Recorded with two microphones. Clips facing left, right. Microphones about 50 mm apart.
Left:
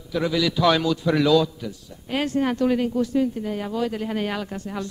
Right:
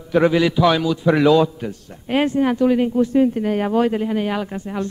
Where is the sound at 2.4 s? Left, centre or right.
Centre.